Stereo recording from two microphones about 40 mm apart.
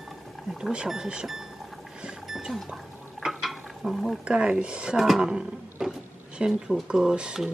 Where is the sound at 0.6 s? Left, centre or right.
Right.